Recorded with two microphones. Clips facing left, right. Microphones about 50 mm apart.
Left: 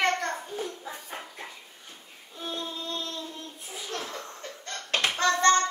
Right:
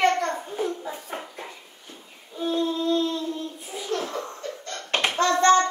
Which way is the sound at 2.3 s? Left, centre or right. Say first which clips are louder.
Right 10 dB; centre.